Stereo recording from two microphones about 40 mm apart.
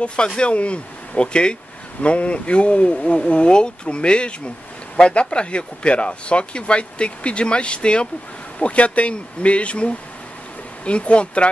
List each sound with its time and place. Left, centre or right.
0.0 s speech: left